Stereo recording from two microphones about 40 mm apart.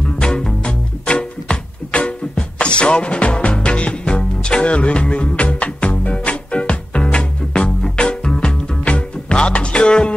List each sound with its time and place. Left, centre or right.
0.2 s music: centre